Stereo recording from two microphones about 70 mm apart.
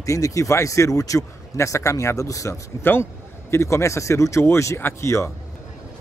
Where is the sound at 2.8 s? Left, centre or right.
Left.